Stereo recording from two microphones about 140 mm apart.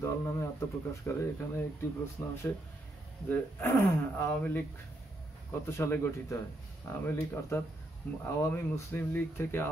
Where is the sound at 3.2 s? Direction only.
15° left (ahead or behind).